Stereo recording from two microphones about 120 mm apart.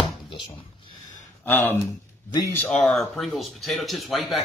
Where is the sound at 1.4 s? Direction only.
15° left (ahead or behind).